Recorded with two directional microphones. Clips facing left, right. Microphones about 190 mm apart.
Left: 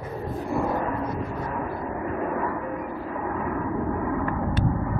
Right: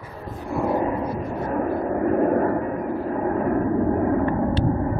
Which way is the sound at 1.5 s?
45° right (ahead or behind).